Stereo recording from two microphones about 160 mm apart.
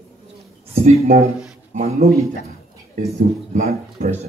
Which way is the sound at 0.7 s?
40° right (ahead or behind).